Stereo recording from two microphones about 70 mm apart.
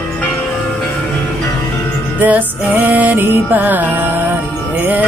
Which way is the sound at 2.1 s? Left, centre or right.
Right.